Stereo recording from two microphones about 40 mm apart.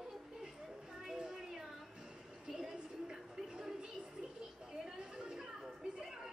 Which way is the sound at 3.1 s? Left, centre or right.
Centre.